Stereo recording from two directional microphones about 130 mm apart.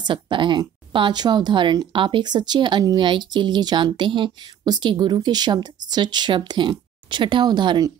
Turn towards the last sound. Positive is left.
turn(degrees=-35)  # may be behind; listen again after turning